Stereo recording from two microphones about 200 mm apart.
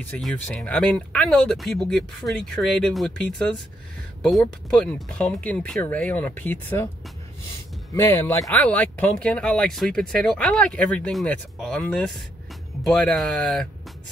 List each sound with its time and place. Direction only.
0.0 s speech: 5° left (ahead or behind)
7.9 s speech: 10° left (ahead or behind)